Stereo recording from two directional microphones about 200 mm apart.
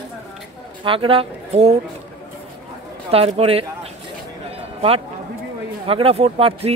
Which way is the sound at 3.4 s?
30° right (ahead or behind).